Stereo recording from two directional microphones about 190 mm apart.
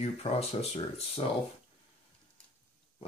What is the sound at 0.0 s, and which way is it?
Speech, 35° left (ahead or behind).